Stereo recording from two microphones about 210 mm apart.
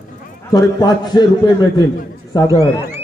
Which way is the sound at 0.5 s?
15° left (ahead or behind).